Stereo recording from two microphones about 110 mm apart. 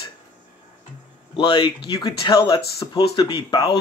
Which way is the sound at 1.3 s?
45° left (ahead or behind).